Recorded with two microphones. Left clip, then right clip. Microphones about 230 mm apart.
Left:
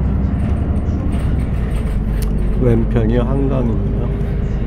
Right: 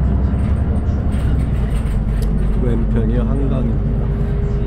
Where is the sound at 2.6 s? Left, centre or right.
Left.